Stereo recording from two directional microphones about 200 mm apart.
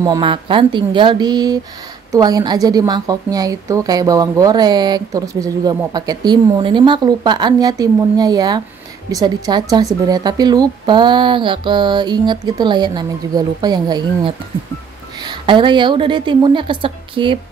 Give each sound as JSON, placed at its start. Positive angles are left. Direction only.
{"t": 0.0, "sound": "a woman's voice", "side_deg": -20}